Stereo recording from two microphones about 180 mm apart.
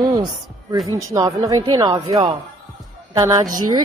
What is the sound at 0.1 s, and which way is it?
Music, 25° right (ahead or behind).